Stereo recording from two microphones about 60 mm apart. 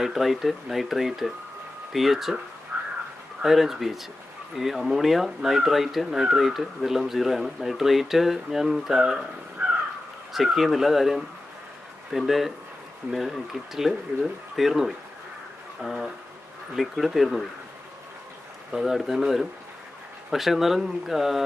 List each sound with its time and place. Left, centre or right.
0.0 s speech: centre
2.7 s crow: right
3.4 s speech: centre
9.6 s crow: right
10.3 s speech: centre
18.7 s speech: centre